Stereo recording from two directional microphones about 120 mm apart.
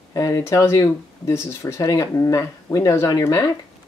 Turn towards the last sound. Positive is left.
turn(degrees=30)  # may be behind; listen again after turning